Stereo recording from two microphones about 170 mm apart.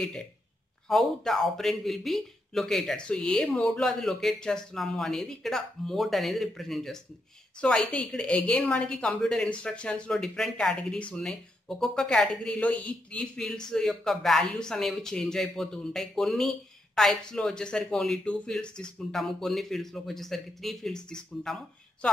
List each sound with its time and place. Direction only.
0.8 s a woman's voice: centre (ahead or behind)